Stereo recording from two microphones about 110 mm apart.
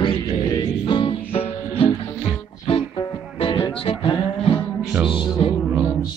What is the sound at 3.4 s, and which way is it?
Music, 55° left (ahead or behind).